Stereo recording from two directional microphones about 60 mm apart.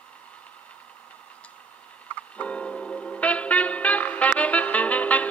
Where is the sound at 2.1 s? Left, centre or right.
Left.